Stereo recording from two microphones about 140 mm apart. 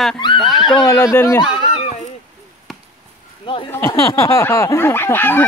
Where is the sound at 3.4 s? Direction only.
35° left (ahead or behind).